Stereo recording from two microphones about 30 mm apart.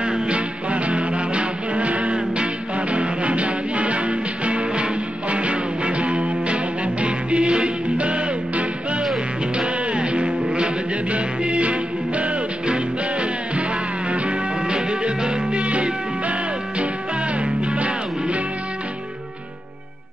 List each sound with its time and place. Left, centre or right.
0.0 s music: right
2.3 s music: right
14.7 s music: right